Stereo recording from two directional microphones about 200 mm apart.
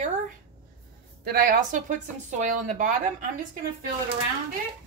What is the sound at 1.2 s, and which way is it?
Speech, 45° right (ahead or behind).